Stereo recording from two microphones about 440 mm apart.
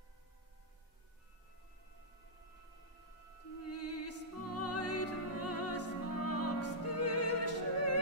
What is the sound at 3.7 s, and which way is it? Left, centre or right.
Music, left.